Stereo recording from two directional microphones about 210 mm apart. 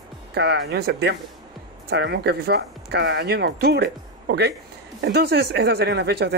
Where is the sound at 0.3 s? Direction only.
55° right (ahead or behind).